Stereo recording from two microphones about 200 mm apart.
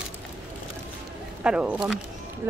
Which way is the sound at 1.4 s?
5° right (ahead or behind).